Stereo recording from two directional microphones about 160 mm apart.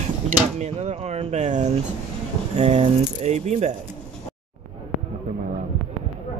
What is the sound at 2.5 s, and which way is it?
Speech, 45° right (ahead or behind).